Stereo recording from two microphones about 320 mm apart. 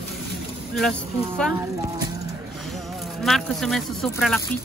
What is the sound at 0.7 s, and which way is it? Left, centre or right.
Speech, centre.